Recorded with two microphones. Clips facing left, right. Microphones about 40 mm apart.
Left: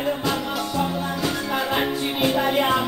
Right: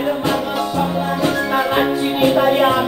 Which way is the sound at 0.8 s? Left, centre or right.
Right.